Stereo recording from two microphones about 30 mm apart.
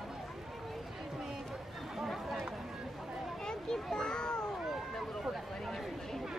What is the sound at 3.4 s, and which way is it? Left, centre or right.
Children playing, left.